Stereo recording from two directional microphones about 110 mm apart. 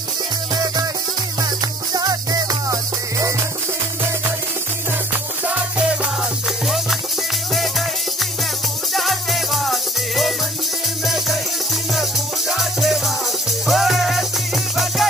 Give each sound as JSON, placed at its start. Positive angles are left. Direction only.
{"t": 1.4, "sound": "music", "side_deg": -35}
{"t": 8.9, "sound": "music", "side_deg": 0}